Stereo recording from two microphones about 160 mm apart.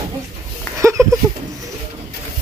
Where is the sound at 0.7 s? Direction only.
20° right (ahead or behind).